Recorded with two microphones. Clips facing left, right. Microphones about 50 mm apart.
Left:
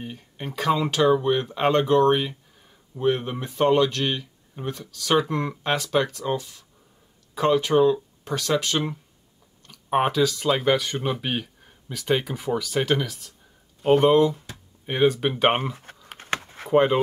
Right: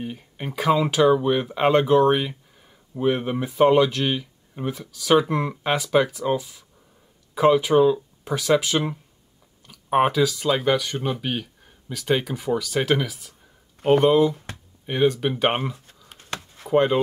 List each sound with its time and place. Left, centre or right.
0.0 s speech: centre
16.1 s a sound: left
16.7 s speech: centre